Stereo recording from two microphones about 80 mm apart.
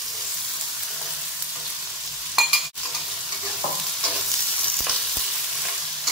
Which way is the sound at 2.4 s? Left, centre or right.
Centre.